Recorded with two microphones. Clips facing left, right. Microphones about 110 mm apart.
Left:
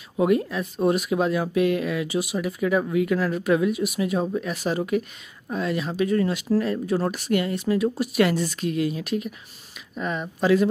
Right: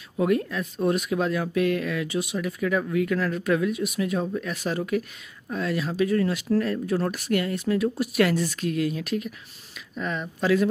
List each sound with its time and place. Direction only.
0.2 s speech: 5° left (ahead or behind)